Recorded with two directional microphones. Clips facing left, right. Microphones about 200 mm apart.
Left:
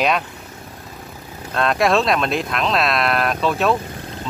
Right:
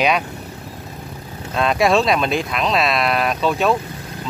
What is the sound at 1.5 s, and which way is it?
Speech, centre (ahead or behind).